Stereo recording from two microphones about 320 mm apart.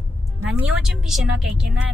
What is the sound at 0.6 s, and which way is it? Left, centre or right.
Speech, centre.